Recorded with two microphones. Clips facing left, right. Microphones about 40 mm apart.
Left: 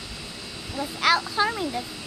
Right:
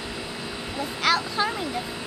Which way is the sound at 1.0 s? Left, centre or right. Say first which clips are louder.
Left 2 dB; centre.